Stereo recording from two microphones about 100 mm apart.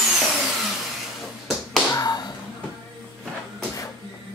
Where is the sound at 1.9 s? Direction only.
40° left (ahead or behind).